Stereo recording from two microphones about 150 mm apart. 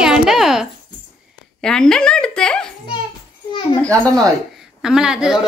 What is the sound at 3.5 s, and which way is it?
Speech, 30° left (ahead or behind).